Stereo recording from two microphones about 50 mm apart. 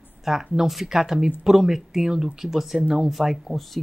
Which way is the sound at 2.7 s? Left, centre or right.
Centre.